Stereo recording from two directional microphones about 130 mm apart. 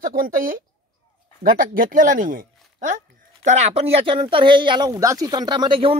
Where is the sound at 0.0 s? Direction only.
90° right.